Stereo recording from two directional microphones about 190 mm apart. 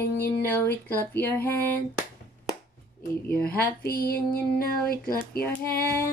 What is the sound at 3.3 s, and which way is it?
Female singing, 50° left (ahead or behind).